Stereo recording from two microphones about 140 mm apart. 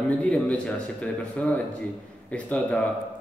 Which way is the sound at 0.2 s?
10° left (ahead or behind).